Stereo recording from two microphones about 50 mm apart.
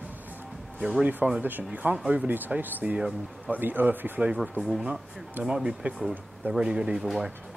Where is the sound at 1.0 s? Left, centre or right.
Right.